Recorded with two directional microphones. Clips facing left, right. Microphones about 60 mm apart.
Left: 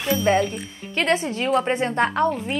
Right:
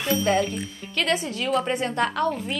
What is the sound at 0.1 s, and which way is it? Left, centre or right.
A woman's voice, left.